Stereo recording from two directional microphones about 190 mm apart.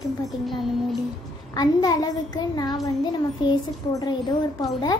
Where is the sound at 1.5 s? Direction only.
20° left (ahead or behind).